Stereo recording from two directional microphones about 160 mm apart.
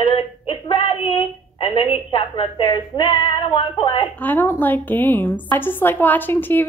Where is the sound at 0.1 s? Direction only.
35° left (ahead or behind).